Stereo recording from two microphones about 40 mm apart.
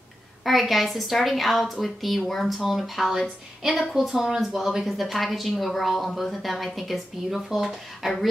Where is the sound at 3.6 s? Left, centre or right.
Centre.